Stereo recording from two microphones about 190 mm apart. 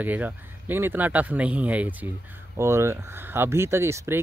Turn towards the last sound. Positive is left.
turn(degrees=-15)  # may be behind; listen again after turning